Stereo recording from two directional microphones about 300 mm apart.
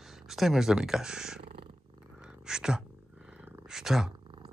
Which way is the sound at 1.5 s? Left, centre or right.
Centre.